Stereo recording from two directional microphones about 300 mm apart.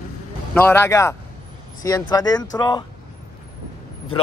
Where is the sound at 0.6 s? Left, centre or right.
Centre.